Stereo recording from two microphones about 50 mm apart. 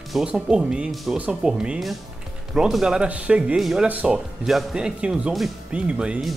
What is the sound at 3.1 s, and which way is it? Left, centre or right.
Speech, right.